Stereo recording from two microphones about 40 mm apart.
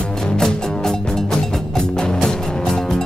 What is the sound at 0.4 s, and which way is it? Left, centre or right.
Music, centre.